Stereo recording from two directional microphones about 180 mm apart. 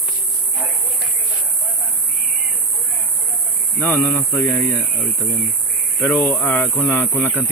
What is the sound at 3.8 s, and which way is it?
Speech, 10° left (ahead or behind).